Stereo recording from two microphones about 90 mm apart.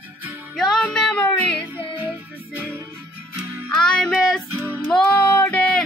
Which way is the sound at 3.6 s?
10° left (ahead or behind).